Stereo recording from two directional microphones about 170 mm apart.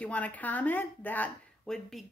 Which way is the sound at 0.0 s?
10° left (ahead or behind).